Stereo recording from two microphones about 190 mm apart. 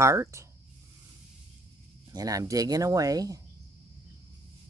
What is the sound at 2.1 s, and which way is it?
Speech, 20° right (ahead or behind).